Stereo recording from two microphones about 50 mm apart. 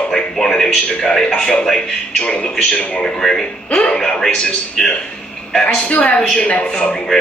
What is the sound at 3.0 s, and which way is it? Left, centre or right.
A man's voice, centre.